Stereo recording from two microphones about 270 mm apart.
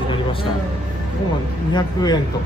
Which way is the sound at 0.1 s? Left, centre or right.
Centre.